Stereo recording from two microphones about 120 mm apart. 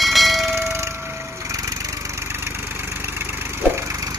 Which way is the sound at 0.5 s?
25° right (ahead or behind).